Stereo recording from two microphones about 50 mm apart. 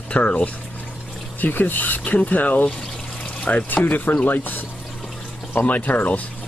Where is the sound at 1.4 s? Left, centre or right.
Left.